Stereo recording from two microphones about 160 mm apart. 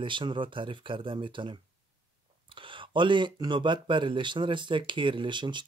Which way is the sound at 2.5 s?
30° right (ahead or behind).